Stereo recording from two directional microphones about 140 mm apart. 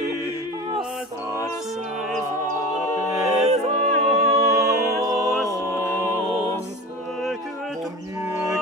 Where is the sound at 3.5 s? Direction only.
55° right (ahead or behind).